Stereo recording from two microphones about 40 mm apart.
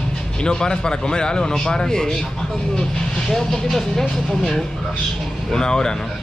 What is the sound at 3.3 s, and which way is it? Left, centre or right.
Speech, centre.